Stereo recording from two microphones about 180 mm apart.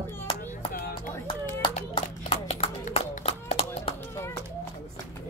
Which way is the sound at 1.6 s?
30° left (ahead or behind).